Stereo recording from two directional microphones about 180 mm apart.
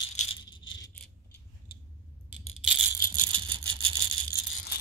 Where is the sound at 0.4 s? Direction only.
25° left (ahead or behind).